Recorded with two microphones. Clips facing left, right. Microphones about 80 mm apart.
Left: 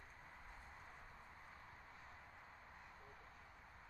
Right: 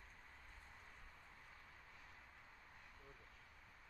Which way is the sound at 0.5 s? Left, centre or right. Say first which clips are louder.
Left 4 dB; left.